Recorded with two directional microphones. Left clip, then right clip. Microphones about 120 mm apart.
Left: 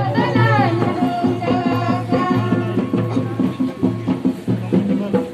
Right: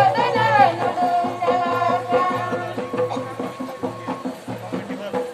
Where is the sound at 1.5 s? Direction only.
15° left (ahead or behind).